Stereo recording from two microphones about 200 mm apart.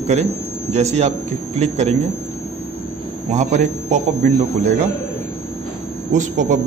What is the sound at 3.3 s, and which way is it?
Speech, 35° right (ahead or behind).